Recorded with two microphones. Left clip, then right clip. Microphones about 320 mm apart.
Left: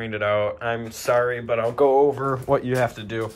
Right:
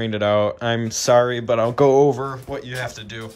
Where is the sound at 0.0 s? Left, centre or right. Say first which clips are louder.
Right 4 dB; centre.